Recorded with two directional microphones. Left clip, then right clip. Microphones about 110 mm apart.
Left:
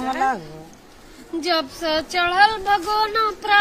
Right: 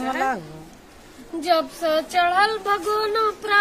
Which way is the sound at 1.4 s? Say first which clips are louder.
Right 2 dB; 25° right (ahead or behind).